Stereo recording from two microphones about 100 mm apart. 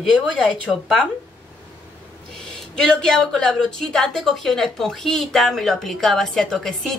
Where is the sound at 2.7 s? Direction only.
5° left (ahead or behind).